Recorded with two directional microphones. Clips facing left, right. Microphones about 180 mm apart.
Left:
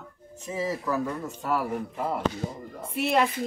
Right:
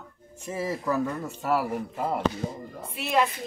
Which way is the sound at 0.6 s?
10° right (ahead or behind).